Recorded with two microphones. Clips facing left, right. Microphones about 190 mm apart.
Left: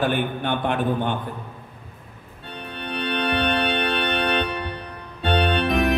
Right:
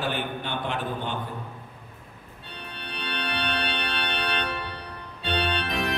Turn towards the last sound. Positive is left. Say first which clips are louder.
# left 8 dB
turn(degrees=55)  # may be behind; listen again after turning